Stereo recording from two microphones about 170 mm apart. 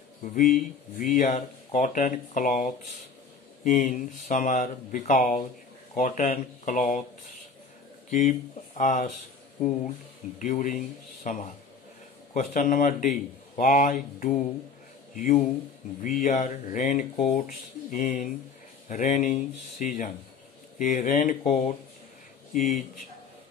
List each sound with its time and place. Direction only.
0.2 s speech: 50° left (ahead or behind)
8.1 s speech: 45° left (ahead or behind)
10.4 s speech: 50° left (ahead or behind)